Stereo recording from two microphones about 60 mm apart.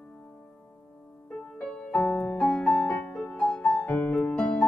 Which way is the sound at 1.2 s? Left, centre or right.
Centre.